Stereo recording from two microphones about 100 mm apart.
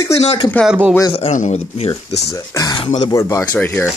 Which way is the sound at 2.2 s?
35° left (ahead or behind).